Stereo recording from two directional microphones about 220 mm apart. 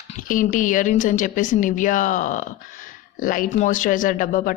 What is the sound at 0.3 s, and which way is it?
Speech, 35° left (ahead or behind).